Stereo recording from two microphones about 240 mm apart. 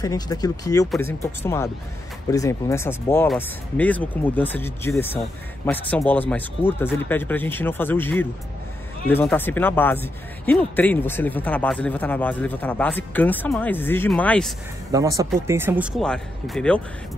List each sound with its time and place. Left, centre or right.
0.0 s speech: centre
14.9 s speech: centre
16.0 s speech: centre